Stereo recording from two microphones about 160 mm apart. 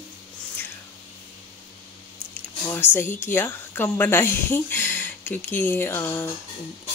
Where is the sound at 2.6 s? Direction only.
15° left (ahead or behind).